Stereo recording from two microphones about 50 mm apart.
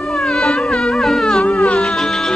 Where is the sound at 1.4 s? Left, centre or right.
Centre.